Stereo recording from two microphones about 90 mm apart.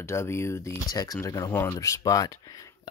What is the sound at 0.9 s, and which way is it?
Speech, 45° left (ahead or behind).